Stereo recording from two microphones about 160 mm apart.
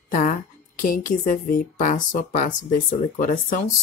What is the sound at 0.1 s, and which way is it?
A woman's voice, 55° left (ahead or behind).